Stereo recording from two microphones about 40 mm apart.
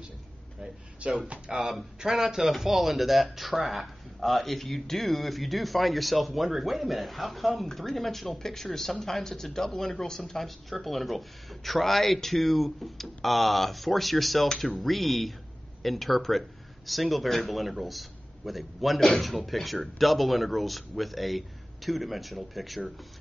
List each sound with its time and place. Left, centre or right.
1.0 s speech: right
1.5 s speech: centre
2.0 s speech: centre